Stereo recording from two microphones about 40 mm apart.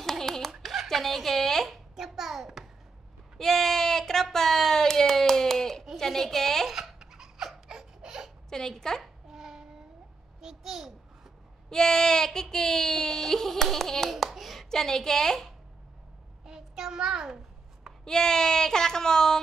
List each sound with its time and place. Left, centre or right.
0.0 s hands: centre
0.5 s a sound: centre
2.0 s hands: centre
3.3 s a sound: centre
5.9 s a woman's voice: centre
6.7 s laughter: centre
8.5 s a woman's voice: centre
9.0 s babbling: centre
11.7 s a woman's voice: centre
12.4 s hands: centre
14.3 s a sound: centre
14.7 s a woman's voice: centre
16.4 s child singing: centre
18.0 s child singing: centre